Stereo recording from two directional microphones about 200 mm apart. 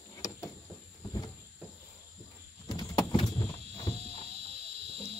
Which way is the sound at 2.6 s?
20° left (ahead or behind).